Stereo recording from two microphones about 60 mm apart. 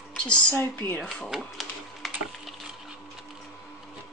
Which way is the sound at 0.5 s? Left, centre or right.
Left.